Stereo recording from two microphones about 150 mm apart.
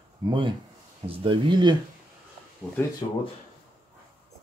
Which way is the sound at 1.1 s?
35° right (ahead or behind).